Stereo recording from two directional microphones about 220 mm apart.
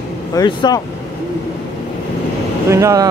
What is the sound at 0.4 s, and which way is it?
Speech, 20° left (ahead or behind).